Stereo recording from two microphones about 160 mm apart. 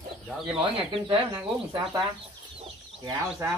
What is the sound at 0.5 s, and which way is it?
Speech, 35° right (ahead or behind).